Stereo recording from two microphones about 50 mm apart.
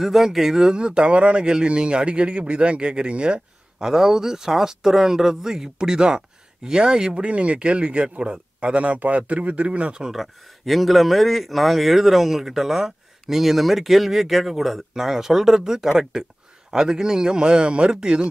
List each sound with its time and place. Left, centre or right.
0.0 s speech: centre; by 3.3 s right
3.8 s speech: centre
7.2 s speech: right
10.0 s speech: centre